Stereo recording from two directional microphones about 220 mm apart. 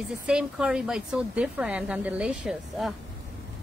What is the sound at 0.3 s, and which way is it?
A woman's voice, 5° right (ahead or behind).